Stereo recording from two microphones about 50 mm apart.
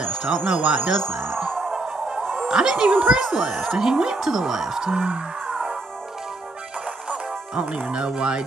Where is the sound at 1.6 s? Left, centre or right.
Centre.